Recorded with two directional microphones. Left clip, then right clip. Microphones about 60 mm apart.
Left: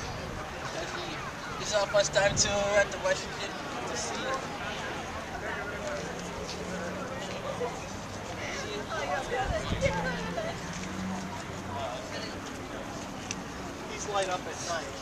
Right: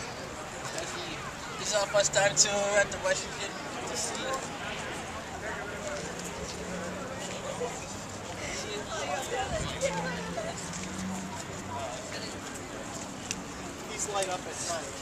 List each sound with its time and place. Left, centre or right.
1.7 s speech: centre
8.9 s a sound: right
14.1 s speech: right